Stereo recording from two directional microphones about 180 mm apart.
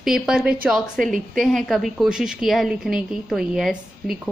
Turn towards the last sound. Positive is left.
turn(degrees=0)  # may be behind; listen again after turning